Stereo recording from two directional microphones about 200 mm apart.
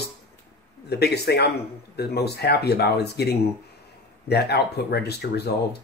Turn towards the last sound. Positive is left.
turn(degrees=55)  # may be behind; listen again after turning